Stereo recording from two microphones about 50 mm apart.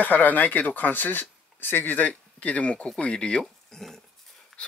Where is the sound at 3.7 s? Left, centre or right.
Centre.